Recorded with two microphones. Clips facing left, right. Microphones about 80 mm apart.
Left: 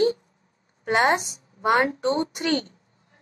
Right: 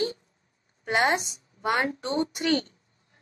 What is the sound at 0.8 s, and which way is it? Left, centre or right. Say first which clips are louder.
A woman's voice: left 3 dB; left.